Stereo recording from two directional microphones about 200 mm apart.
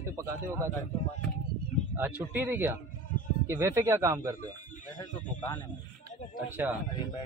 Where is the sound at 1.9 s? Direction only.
10° right (ahead or behind).